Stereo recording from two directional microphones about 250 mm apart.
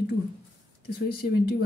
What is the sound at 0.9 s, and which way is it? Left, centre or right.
Speech, left.